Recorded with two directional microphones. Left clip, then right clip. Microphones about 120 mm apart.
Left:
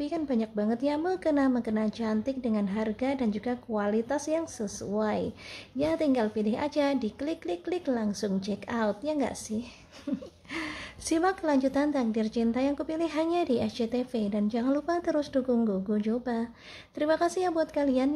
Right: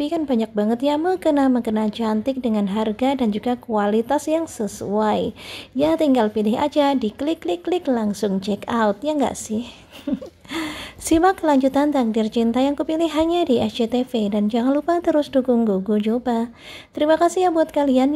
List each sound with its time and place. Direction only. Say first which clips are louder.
0.0 s a woman's voice: right 9 dB; 30° right (ahead or behind)
10.1 s a sound: right 9 dB; 20° right (ahead or behind)
10.5 s a woman's voice: right 8 dB; 35° right (ahead or behind)